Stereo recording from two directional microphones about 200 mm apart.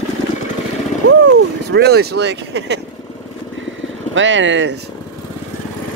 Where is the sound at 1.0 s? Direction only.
60° right (ahead or behind).